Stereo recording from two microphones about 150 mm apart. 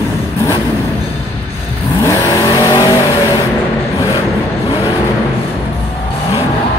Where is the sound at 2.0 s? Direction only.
25° left (ahead or behind).